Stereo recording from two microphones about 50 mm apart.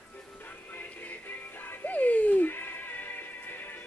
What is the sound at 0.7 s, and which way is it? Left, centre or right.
Music, left.